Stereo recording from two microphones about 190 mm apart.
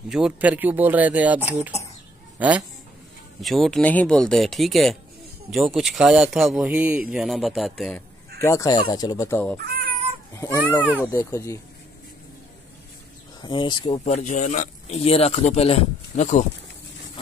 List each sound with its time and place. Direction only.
0.1 s speech: 5° right (ahead or behind)
8.4 s speech: 15° left (ahead or behind)
9.7 s cat: 55° right (ahead or behind)
11.0 s speech: 10° left (ahead or behind)
13.4 s speech: 25° left (ahead or behind)